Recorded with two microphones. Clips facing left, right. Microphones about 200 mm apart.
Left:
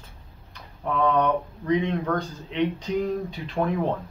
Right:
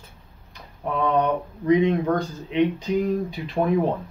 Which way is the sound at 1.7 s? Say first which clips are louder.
Right 5 dB; 10° right (ahead or behind).